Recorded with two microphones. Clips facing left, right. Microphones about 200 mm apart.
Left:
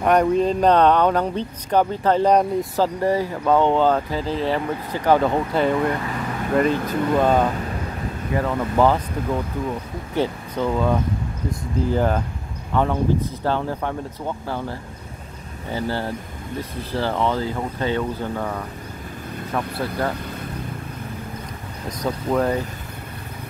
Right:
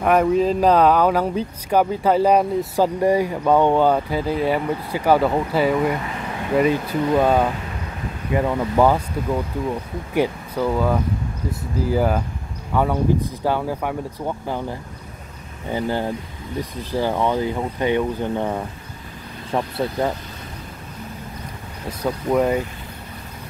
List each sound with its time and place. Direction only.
0.0 s speech: centre (ahead or behind)
10.1 s speech: 10° right (ahead or behind)
21.8 s speech: 10° right (ahead or behind)